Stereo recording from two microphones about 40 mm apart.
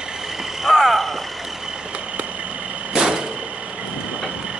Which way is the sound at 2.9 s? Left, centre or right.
Centre.